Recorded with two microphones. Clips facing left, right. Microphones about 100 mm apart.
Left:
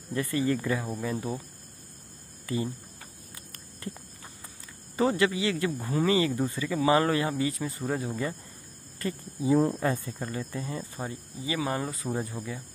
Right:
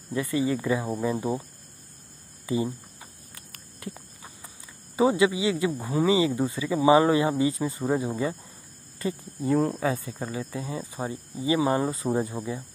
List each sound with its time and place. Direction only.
0.1 s speech: 10° right (ahead or behind)
2.4 s cricket: 20° right (ahead or behind)
3.3 s a sound: 5° right (ahead or behind)
4.9 s speech: 15° right (ahead or behind)
6.6 s speech: 20° right (ahead or behind)
9.4 s speech: centre (ahead or behind); by 11.1 s 15° right (ahead or behind)
11.3 s speech: 30° right (ahead or behind)